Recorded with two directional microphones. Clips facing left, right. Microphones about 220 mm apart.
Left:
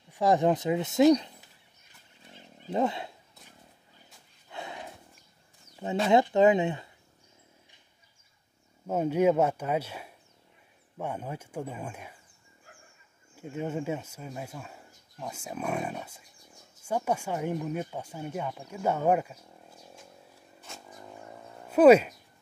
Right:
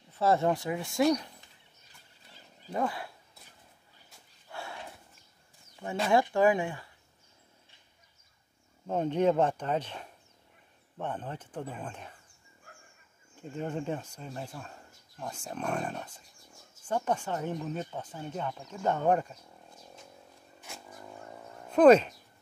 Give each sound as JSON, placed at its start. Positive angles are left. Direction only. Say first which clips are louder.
{"t": 0.1, "sound": "speech", "louder": "left 2 dB", "side_deg": 15}
{"t": 2.7, "sound": "speech", "louder": "left 4 dB", "side_deg": 25}
{"t": 4.5, "sound": "dog", "louder": "left 2 dB", "side_deg": 20}
{"t": 6.0, "sound": "speech", "louder": "left 3 dB", "side_deg": 20}
{"t": 8.8, "sound": "speech", "louder": "left 2 dB", "side_deg": 10}
{"t": 13.4, "sound": "speech", "louder": "left 2 dB", "side_deg": 10}
{"t": 18.7, "sound": "a sound", "louder": "left 1 dB", "side_deg": 10}
{"t": 21.6, "sound": "speech", "louder": "left 2 dB", "side_deg": 10}